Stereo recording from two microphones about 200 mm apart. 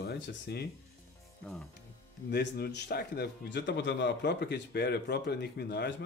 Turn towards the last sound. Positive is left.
turn(degrees=55)  # may be behind; listen again after turning